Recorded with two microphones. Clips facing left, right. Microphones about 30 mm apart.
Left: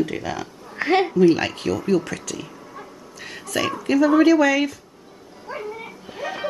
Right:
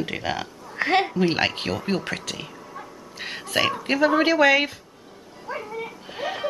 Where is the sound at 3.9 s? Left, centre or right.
Right.